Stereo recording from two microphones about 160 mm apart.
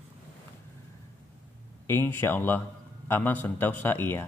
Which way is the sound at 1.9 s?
15° left (ahead or behind).